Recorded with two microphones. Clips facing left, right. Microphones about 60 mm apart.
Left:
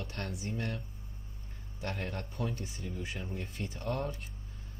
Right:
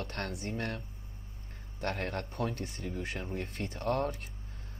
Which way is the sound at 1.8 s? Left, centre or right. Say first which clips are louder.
Right 4 dB; right.